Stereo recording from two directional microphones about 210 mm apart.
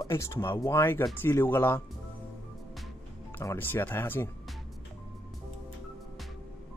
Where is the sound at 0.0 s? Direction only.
15° left (ahead or behind).